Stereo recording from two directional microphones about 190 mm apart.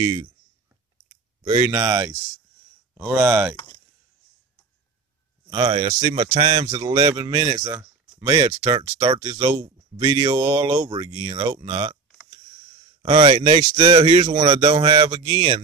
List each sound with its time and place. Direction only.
0.0 s speech: 25° right (ahead or behind)
3.5 s speech: 20° left (ahead or behind)
5.5 s speech: 25° right (ahead or behind)
7.6 s a sound: 15° right (ahead or behind)
8.5 s speech: 20° right (ahead or behind)
13.1 s speech: 25° right (ahead or behind)